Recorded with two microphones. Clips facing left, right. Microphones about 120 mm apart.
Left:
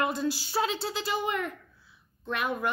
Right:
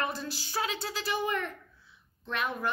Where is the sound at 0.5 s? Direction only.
30° left (ahead or behind).